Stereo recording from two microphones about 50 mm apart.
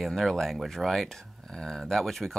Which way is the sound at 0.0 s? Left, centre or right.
Centre.